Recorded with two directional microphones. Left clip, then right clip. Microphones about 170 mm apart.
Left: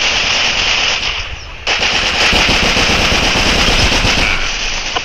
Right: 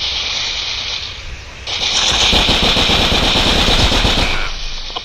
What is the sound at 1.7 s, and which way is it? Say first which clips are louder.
Machine gun: left 2 dB; 50° left (ahead or behind).